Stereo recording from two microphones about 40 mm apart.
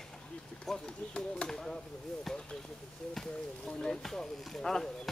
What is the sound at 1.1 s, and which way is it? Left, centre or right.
Speech, left.